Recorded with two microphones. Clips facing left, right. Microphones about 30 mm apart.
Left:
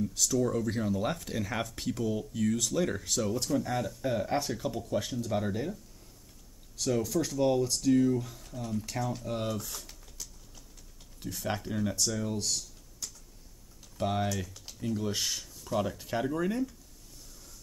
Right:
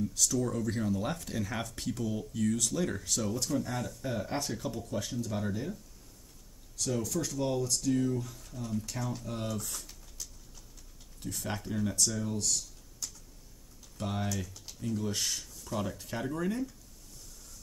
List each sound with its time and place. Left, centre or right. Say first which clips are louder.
0.2 s speech: left 3 dB; centre
6.8 s speech: left 4 dB; centre
11.2 s speech: left 3 dB; centre